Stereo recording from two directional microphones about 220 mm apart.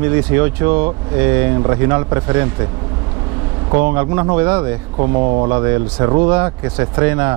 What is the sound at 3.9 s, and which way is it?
Speech, 15° right (ahead or behind).